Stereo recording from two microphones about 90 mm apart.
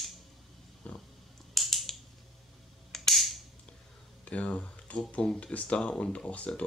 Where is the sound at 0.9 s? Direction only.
15° left (ahead or behind).